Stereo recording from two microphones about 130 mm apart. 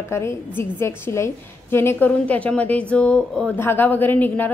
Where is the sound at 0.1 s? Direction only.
20° left (ahead or behind).